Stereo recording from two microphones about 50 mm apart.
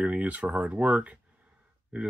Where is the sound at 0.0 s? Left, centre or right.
Right.